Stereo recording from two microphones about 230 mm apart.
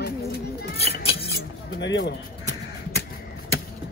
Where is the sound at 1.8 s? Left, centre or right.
Left.